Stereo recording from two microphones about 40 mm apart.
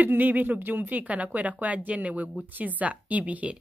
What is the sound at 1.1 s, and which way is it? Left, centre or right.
Speech, right.